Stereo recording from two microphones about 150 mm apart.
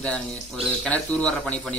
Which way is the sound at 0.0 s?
5° left (ahead or behind).